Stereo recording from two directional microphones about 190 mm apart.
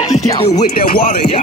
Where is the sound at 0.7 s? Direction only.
50° left (ahead or behind).